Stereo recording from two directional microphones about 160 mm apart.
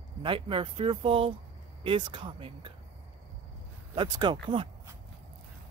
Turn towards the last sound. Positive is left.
turn(degrees=-30)  # may be behind; listen again after turning